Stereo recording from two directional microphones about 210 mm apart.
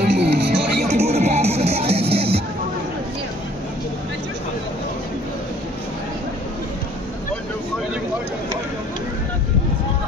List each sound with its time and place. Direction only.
0.0 s music: 55° right (ahead or behind)
0.8 s music: 30° right (ahead or behind)